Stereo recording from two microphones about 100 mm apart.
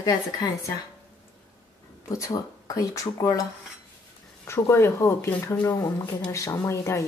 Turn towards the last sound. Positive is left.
turn(degrees=30)  # may be behind; listen again after turning